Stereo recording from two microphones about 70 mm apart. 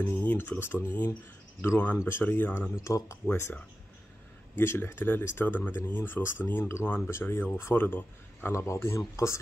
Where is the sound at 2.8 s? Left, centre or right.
Left.